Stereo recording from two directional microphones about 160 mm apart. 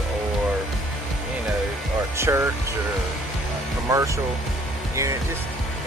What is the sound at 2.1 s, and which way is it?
Speech, 15° right (ahead or behind).